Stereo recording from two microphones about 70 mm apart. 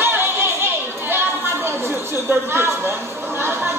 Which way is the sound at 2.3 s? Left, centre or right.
Right.